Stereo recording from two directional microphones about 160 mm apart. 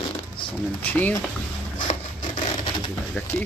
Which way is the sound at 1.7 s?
50° left (ahead or behind).